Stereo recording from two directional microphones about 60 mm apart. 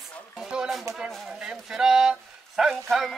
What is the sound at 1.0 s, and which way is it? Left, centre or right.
Speech, centre.